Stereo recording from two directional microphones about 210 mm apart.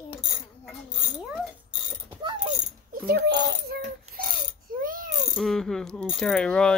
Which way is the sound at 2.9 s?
50° right (ahead or behind).